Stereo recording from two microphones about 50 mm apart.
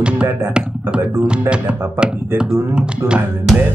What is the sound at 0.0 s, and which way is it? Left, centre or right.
Music, right.